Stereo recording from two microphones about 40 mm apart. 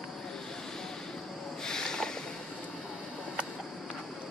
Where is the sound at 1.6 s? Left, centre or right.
Centre.